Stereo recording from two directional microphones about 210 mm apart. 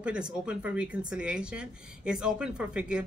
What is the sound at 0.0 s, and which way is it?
A woman's voice, 5° right (ahead or behind).